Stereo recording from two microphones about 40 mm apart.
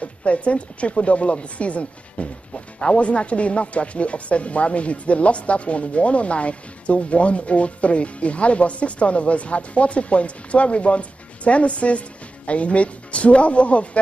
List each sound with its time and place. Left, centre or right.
0.0 s speech: left